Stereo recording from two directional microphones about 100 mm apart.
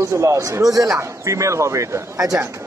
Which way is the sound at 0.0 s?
30° right (ahead or behind).